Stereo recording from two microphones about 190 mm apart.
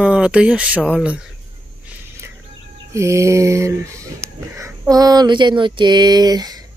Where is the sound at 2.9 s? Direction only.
15° right (ahead or behind).